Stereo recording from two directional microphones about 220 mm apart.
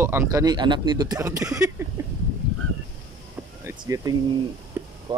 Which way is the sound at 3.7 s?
15° right (ahead or behind).